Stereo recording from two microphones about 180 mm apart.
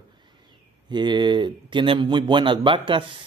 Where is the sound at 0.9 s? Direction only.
25° right (ahead or behind).